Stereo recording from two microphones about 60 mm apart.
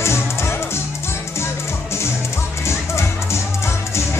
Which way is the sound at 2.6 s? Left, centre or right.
Left.